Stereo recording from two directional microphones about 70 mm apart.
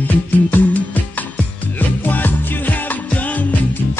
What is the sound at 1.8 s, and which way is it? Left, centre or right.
Music, left.